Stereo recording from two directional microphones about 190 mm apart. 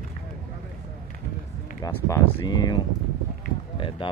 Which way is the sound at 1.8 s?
20° left (ahead or behind).